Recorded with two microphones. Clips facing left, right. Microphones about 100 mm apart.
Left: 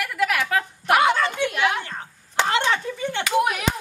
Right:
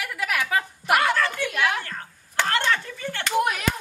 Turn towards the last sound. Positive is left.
turn(degrees=25)  # may be behind; listen again after turning